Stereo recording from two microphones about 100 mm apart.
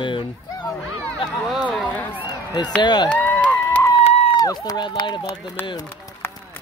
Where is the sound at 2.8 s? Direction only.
45° left (ahead or behind).